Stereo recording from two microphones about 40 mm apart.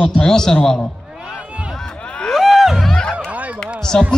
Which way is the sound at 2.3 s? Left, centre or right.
Centre.